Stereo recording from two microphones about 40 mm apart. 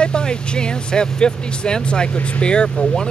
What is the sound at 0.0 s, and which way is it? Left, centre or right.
Speech, left.